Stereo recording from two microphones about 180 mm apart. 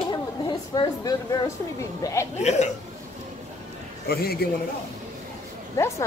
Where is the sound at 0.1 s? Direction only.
25° left (ahead or behind).